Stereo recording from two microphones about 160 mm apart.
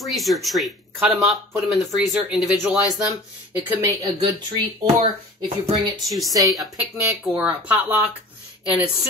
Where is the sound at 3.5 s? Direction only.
15° right (ahead or behind).